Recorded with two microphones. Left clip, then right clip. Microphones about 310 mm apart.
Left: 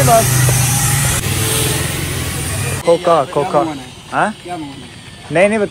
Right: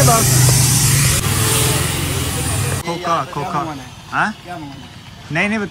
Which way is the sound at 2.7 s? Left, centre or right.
Centre.